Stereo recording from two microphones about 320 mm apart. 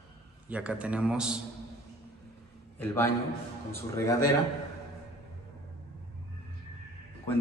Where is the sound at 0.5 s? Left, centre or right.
Centre.